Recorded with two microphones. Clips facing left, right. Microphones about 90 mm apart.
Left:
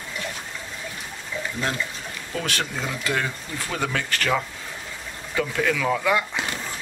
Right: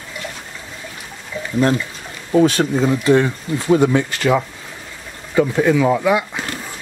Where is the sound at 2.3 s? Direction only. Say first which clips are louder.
Right 14 dB; 30° right (ahead or behind).